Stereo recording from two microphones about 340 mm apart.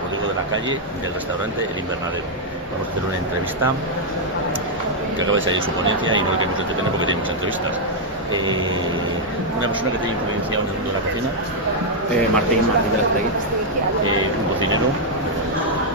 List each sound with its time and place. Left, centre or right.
5.3 s speech: right